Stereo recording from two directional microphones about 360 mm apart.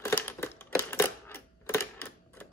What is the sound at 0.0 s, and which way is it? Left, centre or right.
Typewriter, centre.